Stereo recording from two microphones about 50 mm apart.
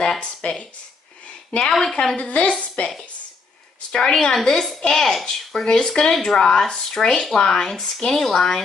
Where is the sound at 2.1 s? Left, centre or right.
Left.